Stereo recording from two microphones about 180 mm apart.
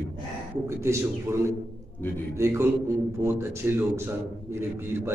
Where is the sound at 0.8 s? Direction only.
15° right (ahead or behind).